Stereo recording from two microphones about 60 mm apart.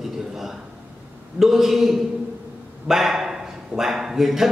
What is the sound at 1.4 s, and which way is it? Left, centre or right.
A man's voice, centre.